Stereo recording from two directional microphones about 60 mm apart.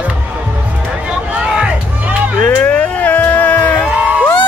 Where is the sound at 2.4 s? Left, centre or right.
Left.